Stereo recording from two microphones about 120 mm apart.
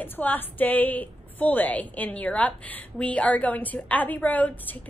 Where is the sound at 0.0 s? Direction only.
15° left (ahead or behind).